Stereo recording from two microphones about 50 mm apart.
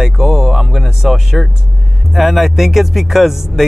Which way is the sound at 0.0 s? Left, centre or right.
Centre.